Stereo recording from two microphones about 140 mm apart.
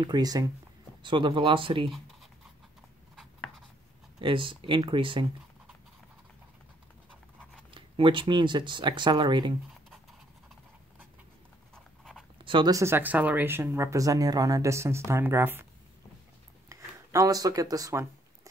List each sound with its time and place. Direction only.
0.0 s speech: 30° right (ahead or behind)
3.2 s writing: centre (ahead or behind)
4.2 s speech: 35° right (ahead or behind)
7.7 s speech: 35° right (ahead or behind)
11.7 s dog: centre (ahead or behind)
12.4 s speech: 30° right (ahead or behind); by 15.6 s 15° right (ahead or behind)
16.6 s a sound: 25° right (ahead or behind)